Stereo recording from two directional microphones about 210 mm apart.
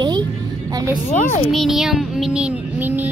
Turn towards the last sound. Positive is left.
turn(degrees=-10)  # may be behind; listen again after turning